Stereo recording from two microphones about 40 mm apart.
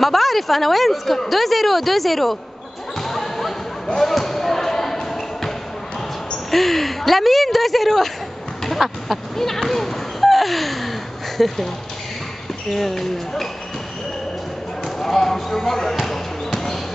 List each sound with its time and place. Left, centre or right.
0.0 s speech: centre
3.0 s a sound: centre
4.0 s basketball bounce: centre
6.5 s speech: centre
8.6 s a sound: centre
11.3 s speech: centre
15.0 s basketball bounce: centre